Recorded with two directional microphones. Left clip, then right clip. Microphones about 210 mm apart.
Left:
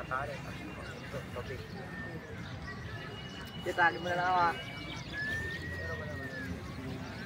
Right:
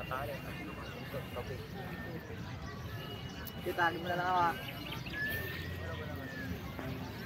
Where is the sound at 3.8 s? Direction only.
30° left (ahead or behind).